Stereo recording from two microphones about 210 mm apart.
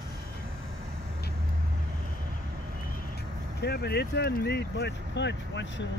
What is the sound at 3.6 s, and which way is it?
Speech, 50° left (ahead or behind).